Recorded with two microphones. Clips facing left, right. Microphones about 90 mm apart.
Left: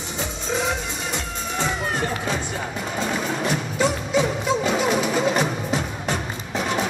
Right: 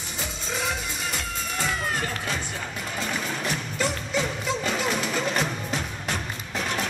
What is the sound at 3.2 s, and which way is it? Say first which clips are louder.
Music: left 5 dB; 5° left (ahead or behind).